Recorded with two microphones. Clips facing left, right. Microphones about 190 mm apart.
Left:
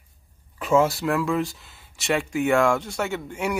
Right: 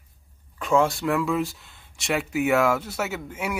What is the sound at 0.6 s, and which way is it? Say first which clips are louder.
Speech: left 1 dB; 5° left (ahead or behind).